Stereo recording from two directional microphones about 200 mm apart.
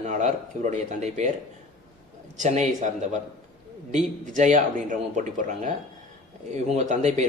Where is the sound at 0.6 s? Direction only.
35° right (ahead or behind).